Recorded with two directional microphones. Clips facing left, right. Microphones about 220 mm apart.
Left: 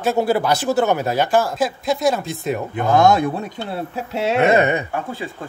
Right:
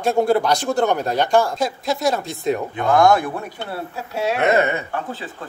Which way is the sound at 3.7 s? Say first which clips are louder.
Left 3 dB; 25° left (ahead or behind).